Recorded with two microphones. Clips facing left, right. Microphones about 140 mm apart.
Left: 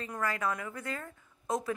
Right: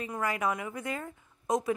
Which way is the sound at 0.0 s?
15° right (ahead or behind).